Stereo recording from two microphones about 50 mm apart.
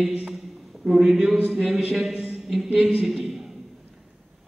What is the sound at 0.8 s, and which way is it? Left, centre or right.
A man's voice, centre.